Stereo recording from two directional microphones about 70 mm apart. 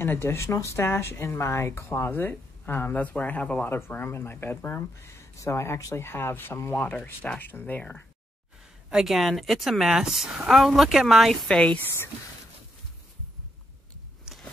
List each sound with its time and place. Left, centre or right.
0.0 s speech: left
3.6 s speech: left
8.9 s a woman's voice: centre
11.4 s speech: centre